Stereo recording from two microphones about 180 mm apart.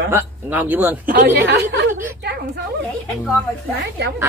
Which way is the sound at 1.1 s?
50° right (ahead or behind).